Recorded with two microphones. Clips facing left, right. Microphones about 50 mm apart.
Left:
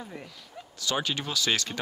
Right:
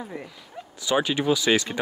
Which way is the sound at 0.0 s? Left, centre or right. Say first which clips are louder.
Right 5 dB; centre.